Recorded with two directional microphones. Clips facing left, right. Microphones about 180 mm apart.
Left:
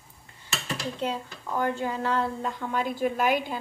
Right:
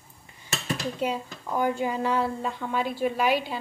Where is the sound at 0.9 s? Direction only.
10° right (ahead or behind).